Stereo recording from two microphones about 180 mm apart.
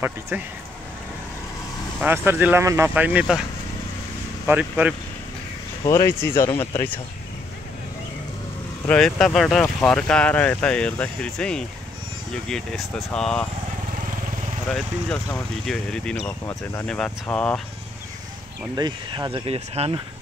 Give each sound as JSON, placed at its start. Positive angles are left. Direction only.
{"t": 0.3, "sound": "speech", "side_deg": -10}
{"t": 2.0, "sound": "speech", "side_deg": -10}
{"t": 4.5, "sound": "speech", "side_deg": -10}
{"t": 5.9, "sound": "speech", "side_deg": 15}
{"t": 8.8, "sound": "speech", "side_deg": 5}
{"t": 14.7, "sound": "speech", "side_deg": 5}
{"t": 18.8, "sound": "speech", "side_deg": -25}